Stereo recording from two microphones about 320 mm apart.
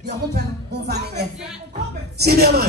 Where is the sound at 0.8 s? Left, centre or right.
Right.